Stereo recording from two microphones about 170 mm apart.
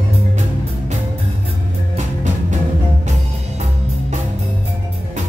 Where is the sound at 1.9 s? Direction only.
45° right (ahead or behind).